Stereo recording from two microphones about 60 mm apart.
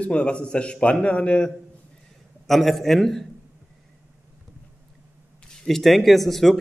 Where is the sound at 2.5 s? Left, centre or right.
Centre.